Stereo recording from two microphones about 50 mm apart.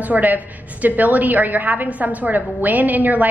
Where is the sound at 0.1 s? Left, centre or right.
Right.